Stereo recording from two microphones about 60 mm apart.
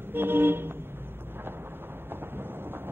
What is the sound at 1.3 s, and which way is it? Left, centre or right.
Train, right.